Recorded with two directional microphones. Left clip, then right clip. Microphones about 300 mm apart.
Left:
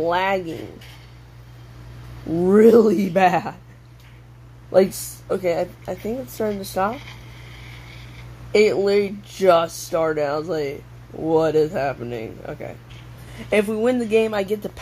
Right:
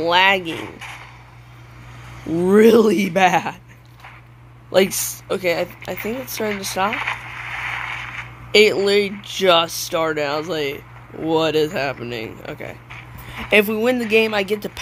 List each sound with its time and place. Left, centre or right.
0.0 s speech: centre
2.2 s speech: centre
2.5 s speech: centre
5.3 s speech: centre